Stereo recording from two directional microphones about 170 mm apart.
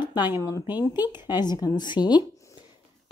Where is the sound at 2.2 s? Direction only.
25° left (ahead or behind).